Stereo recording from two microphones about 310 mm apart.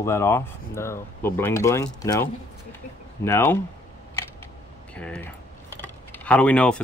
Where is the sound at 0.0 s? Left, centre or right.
Centre.